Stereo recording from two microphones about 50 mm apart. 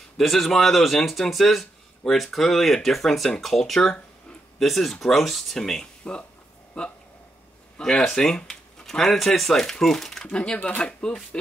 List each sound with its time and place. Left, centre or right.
0.2 s speech: centre
10.2 s speech: centre